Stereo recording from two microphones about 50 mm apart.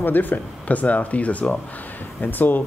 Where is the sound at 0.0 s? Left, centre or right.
Left.